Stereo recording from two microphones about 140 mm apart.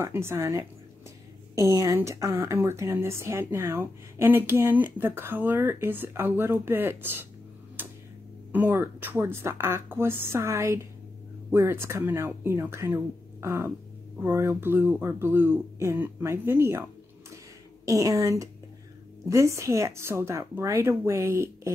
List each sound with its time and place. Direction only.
0.0 s a woman's voice: 15° right (ahead or behind)
7.8 s tick-tock: 15° right (ahead or behind)
8.5 s a woman's voice: 15° right (ahead or behind)
17.8 s speech: 25° right (ahead or behind)